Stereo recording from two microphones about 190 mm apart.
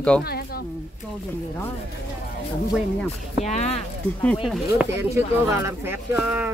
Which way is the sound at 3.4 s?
35° left (ahead or behind).